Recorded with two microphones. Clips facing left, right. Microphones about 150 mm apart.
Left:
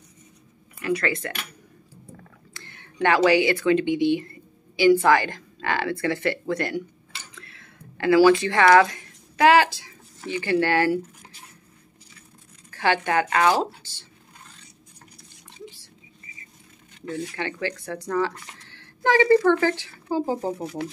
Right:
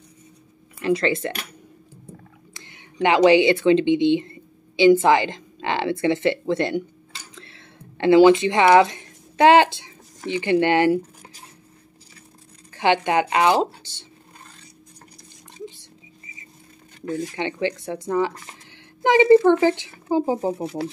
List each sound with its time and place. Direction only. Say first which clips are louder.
0.7 s speech: right 4 dB; 30° right (ahead or behind)
2.5 s speech: right 3 dB; 15° right (ahead or behind)
12.7 s speech: right 3 dB; 20° right (ahead or behind)
13.7 s a sound: left 2 dB; 20° right (ahead or behind)
17.0 s speech: right 4 dB; 40° right (ahead or behind)
17.4 s a woman's voice: right 4 dB; 20° right (ahead or behind)